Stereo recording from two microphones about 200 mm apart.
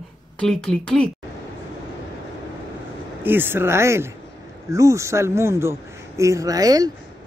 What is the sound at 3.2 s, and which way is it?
Speech, 10° right (ahead or behind).